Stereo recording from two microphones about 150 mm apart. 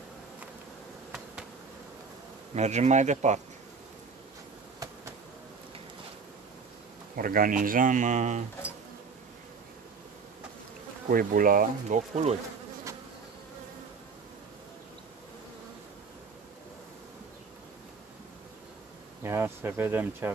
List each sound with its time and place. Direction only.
2.5 s speech: 45° right (ahead or behind)
7.2 s speech: 70° right (ahead or behind); by 8.5 s 55° right (ahead or behind)
11.1 s speech: 70° right (ahead or behind); by 12.4 s 55° right (ahead or behind)
19.2 s speech: 15° right (ahead or behind)